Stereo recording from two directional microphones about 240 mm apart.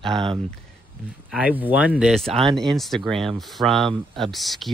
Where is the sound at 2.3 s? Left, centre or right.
Right.